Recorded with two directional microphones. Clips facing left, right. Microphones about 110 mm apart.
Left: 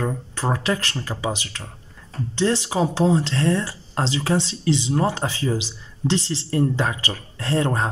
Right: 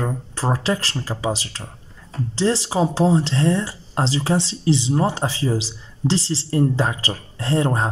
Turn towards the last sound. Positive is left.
turn(degrees=-25)  # may be behind; listen again after turning